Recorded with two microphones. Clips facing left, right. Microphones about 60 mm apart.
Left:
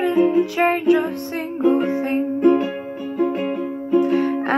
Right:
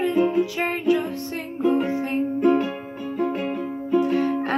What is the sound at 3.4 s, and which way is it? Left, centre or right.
Music, centre.